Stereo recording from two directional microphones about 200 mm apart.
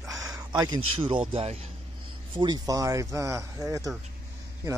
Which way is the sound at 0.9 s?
25° right (ahead or behind).